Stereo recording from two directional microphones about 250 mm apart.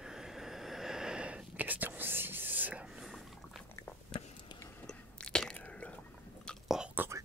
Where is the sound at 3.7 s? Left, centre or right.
Centre.